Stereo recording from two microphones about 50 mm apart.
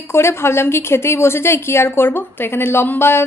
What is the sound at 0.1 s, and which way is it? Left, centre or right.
A woman's voice, left.